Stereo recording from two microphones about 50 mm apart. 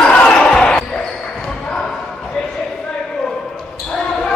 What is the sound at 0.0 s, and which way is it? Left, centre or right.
Basketball bounce, centre.